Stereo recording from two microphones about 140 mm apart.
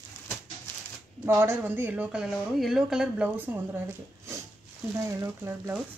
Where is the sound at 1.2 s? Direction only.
15° right (ahead or behind).